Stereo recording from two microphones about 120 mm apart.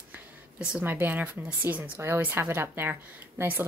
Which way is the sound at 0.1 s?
10° right (ahead or behind).